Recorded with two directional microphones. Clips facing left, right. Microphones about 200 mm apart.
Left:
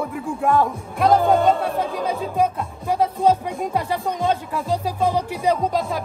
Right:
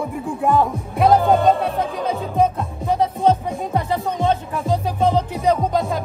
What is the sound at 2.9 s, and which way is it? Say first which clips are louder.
Speech: right 1 dB; 10° left (ahead or behind).